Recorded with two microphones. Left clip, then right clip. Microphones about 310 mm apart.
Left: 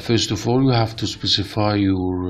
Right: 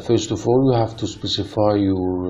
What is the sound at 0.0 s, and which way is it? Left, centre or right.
Speech, left.